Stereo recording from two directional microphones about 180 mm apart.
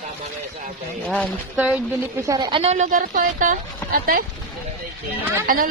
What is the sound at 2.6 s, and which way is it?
Speech, 40° right (ahead or behind).